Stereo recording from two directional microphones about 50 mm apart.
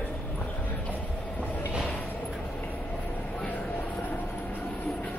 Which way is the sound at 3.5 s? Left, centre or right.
Left.